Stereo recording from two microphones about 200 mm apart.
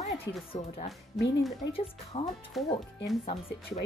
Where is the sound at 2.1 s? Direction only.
30° left (ahead or behind).